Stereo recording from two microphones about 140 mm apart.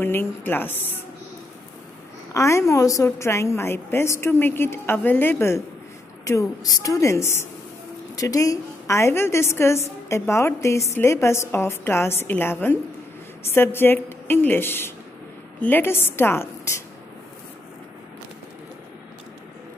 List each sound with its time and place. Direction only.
0.0 s a woman's voice: 15° left (ahead or behind)
2.3 s a woman's voice: 20° left (ahead or behind)